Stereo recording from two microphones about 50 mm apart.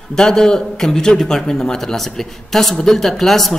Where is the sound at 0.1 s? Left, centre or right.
Centre.